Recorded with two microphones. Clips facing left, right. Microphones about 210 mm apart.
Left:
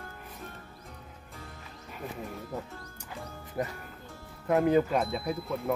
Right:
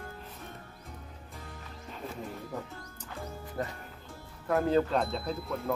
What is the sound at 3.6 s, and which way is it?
Speech, 15° left (ahead or behind).